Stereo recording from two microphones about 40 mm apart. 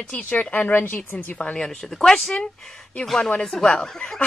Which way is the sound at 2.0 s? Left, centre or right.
Centre.